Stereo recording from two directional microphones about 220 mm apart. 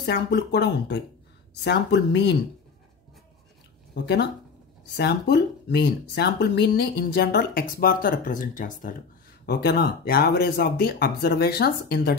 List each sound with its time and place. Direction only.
0.0 s speech: 50° left (ahead or behind)
3.9 s speech: 50° left (ahead or behind)
9.5 s speech: 45° left (ahead or behind)